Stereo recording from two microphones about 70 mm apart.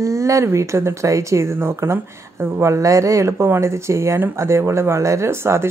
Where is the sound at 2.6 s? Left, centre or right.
Right.